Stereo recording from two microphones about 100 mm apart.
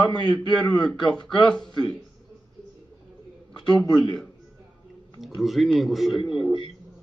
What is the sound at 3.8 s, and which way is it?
Speech, 45° left (ahead or behind).